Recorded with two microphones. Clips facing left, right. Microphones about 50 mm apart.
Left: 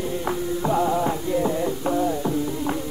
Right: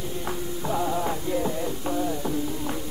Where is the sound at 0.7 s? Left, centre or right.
Centre.